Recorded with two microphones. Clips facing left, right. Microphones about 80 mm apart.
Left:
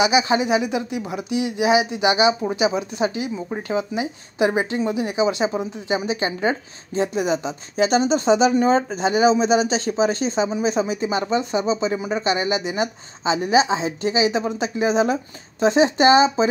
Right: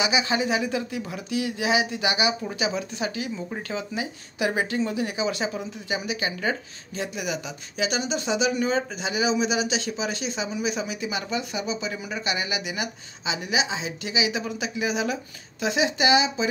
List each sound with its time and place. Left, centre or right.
0.0 s speech: left